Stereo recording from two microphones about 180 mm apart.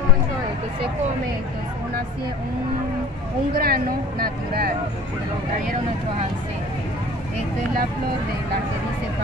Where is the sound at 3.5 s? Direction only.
55° right (ahead or behind).